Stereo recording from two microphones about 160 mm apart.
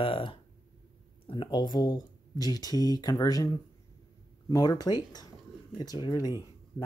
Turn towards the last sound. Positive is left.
turn(degrees=25)  # may be behind; listen again after turning